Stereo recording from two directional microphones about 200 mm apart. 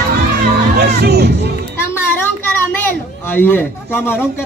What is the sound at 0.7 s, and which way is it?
Music, 55° right (ahead or behind).